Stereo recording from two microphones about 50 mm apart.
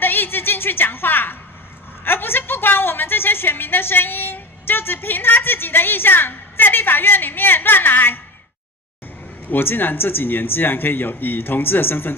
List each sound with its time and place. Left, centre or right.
0.0 s a sound: left
2.0 s a woman's voice: left
9.5 s speech: left